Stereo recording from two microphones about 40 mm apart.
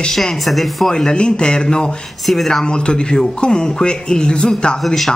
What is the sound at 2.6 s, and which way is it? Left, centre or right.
Speech, left.